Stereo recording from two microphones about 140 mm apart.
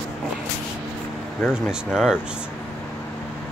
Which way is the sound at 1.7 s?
5° right (ahead or behind).